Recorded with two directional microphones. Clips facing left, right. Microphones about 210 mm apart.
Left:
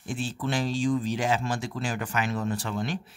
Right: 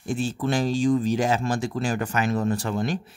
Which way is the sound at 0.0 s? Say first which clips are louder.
Right 5 dB; 40° right (ahead or behind).